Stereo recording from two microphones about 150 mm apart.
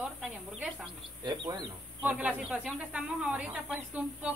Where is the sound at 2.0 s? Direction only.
10° right (ahead or behind).